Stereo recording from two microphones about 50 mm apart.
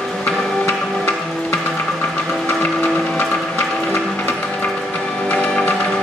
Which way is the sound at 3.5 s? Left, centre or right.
Left.